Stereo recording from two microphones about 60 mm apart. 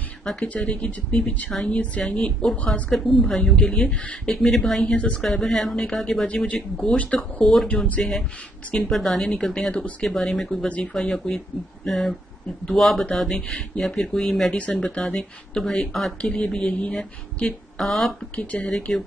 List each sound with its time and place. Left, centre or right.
0.2 s speech: centre
0.5 s a woman's voice: left
2.9 s speech: centre
4.3 s speech: centre
4.9 s a woman's voice: left
5.2 s speech: centre
6.2 s a woman's voice: left
8.0 s speech: centre
14.5 s speech: centre
16.2 s a woman's voice: left
17.7 s speech: centre
18.3 s a woman's voice: left
18.9 s speech: centre